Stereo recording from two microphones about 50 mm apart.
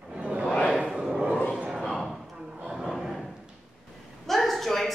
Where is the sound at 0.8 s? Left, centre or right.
Centre.